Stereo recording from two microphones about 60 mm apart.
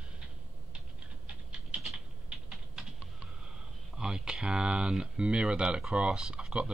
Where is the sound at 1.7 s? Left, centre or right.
Centre.